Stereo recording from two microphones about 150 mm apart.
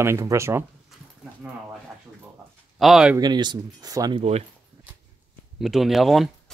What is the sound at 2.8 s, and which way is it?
Speech, 5° right (ahead or behind).